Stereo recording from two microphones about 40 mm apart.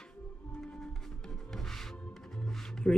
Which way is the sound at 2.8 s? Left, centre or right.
Left.